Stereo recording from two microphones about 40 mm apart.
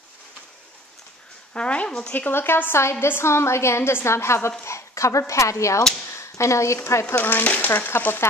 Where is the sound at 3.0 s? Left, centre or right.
Left.